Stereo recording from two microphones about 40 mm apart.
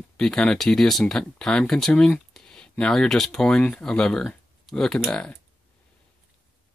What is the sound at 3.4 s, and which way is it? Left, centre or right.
Speech, left.